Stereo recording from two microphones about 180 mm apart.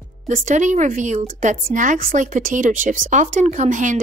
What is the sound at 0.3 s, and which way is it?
A woman's voice, 45° right (ahead or behind).